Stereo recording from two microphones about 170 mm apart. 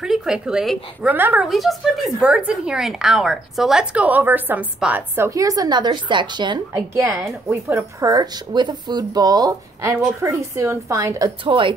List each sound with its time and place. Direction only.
0.0 s a woman's voice: 5° right (ahead or behind); by 11.7 s 30° right (ahead or behind)